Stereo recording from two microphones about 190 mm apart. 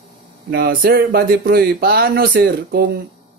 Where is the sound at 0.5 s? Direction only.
55° right (ahead or behind).